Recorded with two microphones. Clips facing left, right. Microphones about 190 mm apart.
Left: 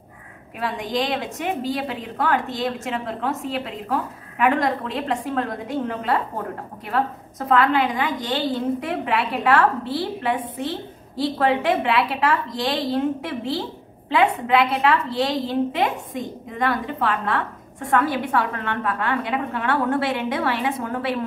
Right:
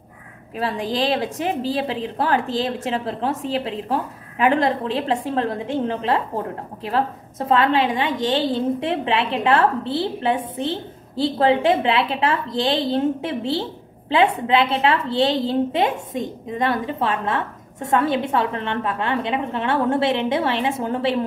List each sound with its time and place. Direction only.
0.6 s a woman's voice: 30° right (ahead or behind)